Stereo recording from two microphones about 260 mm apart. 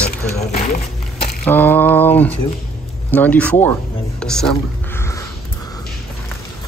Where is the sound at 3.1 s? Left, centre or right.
Centre.